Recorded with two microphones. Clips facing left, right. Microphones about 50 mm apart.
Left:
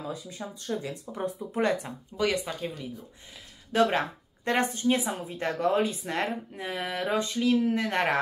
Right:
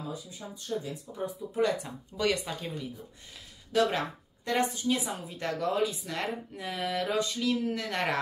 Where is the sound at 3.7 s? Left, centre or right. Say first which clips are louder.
Left 3 dB; left.